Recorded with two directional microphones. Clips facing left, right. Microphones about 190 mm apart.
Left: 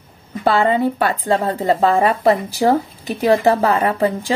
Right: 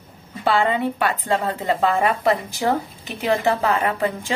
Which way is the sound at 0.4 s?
40° left (ahead or behind).